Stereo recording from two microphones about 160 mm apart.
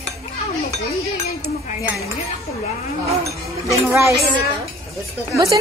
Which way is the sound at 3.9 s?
20° right (ahead or behind).